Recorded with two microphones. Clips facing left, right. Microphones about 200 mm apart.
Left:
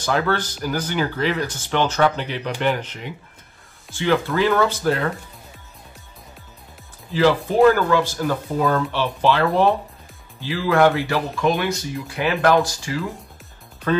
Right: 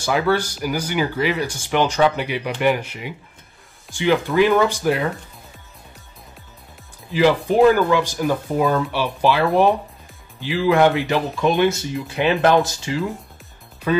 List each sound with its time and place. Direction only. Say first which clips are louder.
0.0 s speech: right 2 dB; 10° right (ahead or behind)
7.1 s speech: right 1 dB; 15° right (ahead or behind)
13.9 s speech: right 1 dB; 10° right (ahead or behind)